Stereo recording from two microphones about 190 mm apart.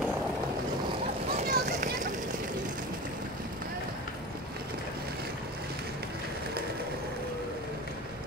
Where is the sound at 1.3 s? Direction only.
45° right (ahead or behind).